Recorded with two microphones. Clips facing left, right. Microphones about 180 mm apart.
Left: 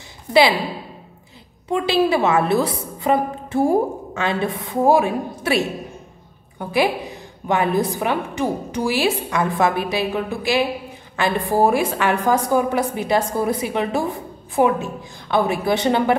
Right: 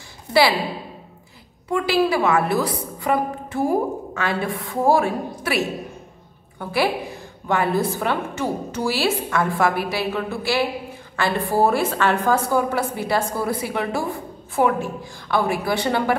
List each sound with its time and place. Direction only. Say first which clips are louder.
1.7 s a woman's voice: left 2 dB; 25° left (ahead or behind)
6.6 s a woman's voice: left 2 dB; 15° left (ahead or behind)